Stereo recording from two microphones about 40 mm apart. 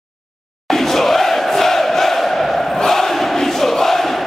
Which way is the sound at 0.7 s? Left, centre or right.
Centre.